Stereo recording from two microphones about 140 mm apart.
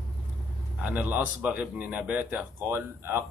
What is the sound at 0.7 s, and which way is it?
Speech, 10° right (ahead or behind).